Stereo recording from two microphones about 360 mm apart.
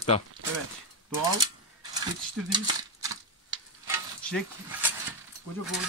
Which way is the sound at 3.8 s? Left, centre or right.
Centre.